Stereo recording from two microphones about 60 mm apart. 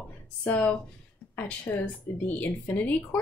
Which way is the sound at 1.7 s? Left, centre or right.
Left.